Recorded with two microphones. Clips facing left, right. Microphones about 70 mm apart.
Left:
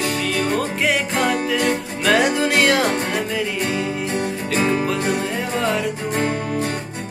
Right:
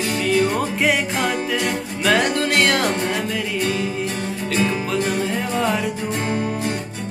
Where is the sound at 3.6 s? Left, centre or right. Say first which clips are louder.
Even; left.